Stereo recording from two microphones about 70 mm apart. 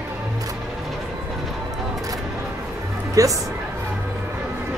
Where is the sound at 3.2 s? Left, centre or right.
Right.